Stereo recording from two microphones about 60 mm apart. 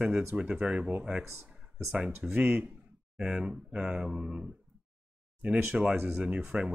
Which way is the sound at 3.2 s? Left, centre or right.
Centre.